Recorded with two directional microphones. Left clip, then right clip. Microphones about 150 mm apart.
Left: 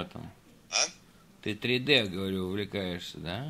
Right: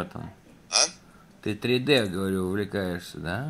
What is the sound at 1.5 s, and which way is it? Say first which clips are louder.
Speech: right 3 dB; 5° right (ahead or behind).